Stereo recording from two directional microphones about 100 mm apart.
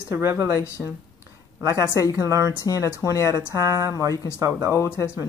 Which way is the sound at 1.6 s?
30° right (ahead or behind).